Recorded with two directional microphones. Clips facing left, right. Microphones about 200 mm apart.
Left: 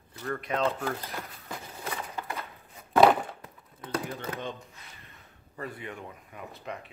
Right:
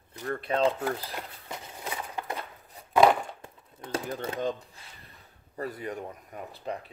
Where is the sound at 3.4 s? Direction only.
25° right (ahead or behind).